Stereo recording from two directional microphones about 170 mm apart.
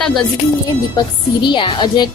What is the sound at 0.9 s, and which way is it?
A woman's voice, 30° left (ahead or behind).